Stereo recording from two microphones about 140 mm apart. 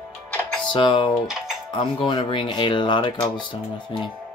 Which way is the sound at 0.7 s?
35° left (ahead or behind).